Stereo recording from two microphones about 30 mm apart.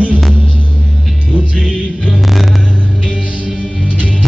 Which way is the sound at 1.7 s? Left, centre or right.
Left.